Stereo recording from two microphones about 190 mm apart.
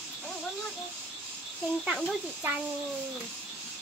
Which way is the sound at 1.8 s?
Centre (ahead or behind).